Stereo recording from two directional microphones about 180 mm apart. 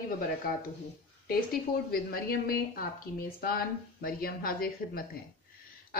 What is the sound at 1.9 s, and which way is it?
A woman's voice, 55° left (ahead or behind).